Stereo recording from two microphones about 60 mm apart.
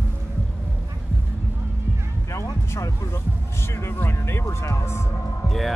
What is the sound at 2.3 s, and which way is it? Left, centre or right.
Music, left.